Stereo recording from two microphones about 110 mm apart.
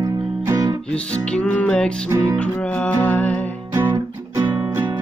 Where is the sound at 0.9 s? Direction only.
10° left (ahead or behind).